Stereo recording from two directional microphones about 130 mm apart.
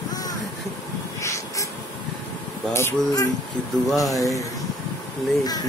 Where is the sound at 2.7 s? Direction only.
20° left (ahead or behind).